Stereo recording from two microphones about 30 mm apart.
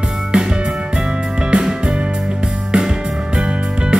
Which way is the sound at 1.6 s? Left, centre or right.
Centre.